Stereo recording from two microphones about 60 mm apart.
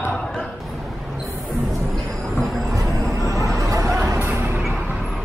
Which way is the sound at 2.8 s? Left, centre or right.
Right.